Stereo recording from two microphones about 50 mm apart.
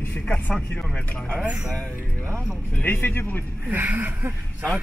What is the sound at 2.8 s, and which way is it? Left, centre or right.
Speech, left.